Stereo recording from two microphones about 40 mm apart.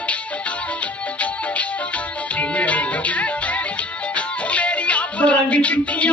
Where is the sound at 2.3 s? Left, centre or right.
Left.